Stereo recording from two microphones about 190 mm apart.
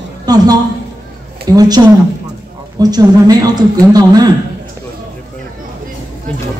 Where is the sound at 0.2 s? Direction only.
20° right (ahead or behind).